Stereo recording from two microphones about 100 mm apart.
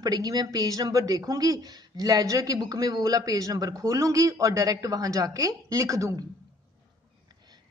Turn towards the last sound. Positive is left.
turn(degrees=-30)  # may be behind; listen again after turning